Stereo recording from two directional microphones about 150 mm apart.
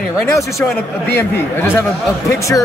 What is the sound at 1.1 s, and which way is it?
Speech, 15° left (ahead or behind).